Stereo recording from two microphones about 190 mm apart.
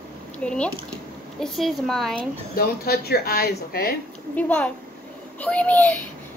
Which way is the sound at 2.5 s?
55° left (ahead or behind).